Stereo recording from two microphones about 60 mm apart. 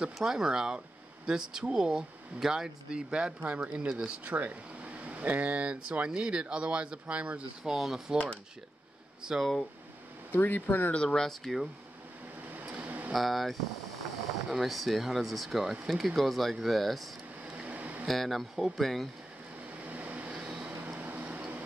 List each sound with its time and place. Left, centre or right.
0.0 s speech: centre
7.6 s speech: centre
9.2 s speech: centre
10.3 s speech: left
11.0 s speech: centre
12.5 s a sound: right
13.1 s speech: centre
17.6 s a sound: right
18.0 s speech: centre
19.8 s vehicle: right